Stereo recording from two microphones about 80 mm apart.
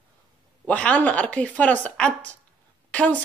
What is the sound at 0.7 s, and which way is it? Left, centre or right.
Speech, centre.